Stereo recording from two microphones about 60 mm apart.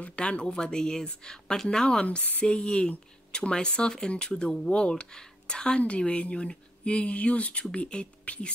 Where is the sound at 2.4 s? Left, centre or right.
Centre.